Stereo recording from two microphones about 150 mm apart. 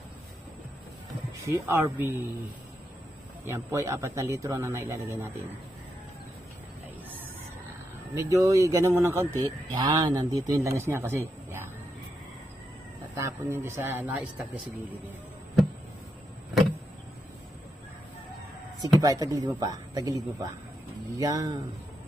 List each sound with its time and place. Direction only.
1.4 s speech: 15° right (ahead or behind)
3.4 s speech: 20° right (ahead or behind)
8.1 s speech: 20° right (ahead or behind)
10.5 s speech: 20° right (ahead or behind)
13.1 s speech: 20° right (ahead or behind)
18.9 s speech: 25° right (ahead or behind)